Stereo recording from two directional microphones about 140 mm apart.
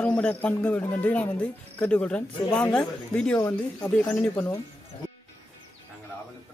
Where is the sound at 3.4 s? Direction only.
25° left (ahead or behind).